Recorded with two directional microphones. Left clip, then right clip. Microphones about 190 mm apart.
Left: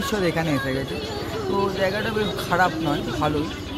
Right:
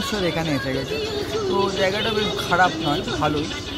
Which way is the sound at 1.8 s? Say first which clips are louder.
Right 2 dB; 5° right (ahead or behind).